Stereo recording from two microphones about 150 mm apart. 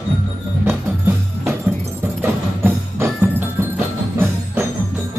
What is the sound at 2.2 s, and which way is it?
Music, 15° right (ahead or behind).